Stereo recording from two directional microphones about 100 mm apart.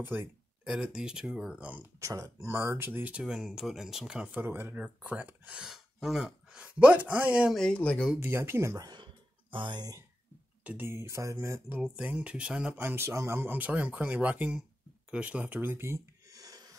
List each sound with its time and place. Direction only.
0.0 s speech: 20° right (ahead or behind)
0.9 s speech: 5° right (ahead or behind)
1.7 s speech: 25° right (ahead or behind); by 4.4 s 5° right (ahead or behind)
4.4 s speech: 20° right (ahead or behind)
7.5 s speech: 10° left (ahead or behind)
8.2 s speech: 25° right (ahead or behind)
8.8 s a sound: 50° right (ahead or behind)
10.6 s speech: 20° right (ahead or behind)
12.0 s speech: 10° right (ahead or behind)
15.0 s a sound: 10° right (ahead or behind); by 16.7 s 40° right (ahead or behind)